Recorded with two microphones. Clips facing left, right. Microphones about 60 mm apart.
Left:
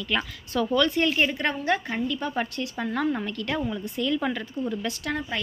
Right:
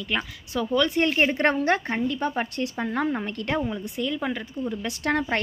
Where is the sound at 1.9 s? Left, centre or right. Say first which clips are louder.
Right 2 dB; right.